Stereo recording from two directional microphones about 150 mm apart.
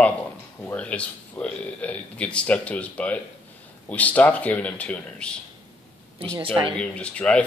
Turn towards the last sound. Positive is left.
turn(degrees=10)  # may be behind; listen again after turning